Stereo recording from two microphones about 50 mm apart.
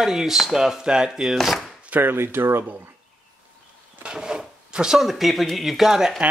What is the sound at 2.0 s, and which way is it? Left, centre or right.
Speech, right.